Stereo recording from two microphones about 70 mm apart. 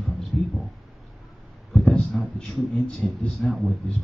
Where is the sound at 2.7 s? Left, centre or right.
Centre.